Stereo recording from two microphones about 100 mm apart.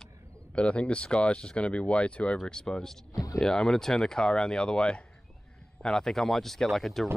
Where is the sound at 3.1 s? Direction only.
35° left (ahead or behind).